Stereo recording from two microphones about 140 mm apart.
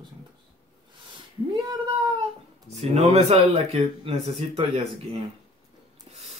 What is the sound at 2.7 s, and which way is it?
Speech, 50° right (ahead or behind).